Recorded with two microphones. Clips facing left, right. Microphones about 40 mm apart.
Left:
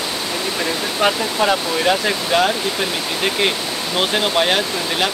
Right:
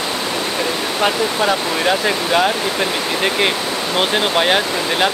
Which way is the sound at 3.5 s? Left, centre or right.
Right.